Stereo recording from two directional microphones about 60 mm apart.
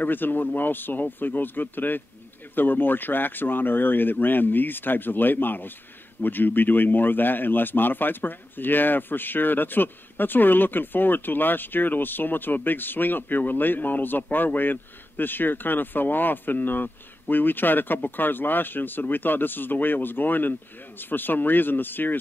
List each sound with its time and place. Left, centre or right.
0.0 s speech: left